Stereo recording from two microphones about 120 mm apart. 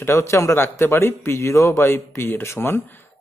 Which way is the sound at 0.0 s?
25° left (ahead or behind).